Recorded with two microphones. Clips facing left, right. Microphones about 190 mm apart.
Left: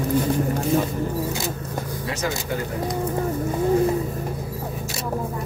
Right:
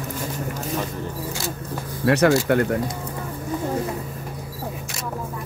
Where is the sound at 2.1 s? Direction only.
65° right (ahead or behind).